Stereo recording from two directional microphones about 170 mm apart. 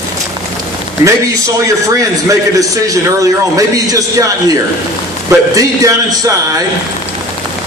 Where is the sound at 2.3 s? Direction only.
20° right (ahead or behind).